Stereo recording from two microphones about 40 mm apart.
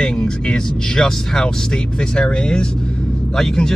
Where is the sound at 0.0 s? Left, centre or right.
Centre.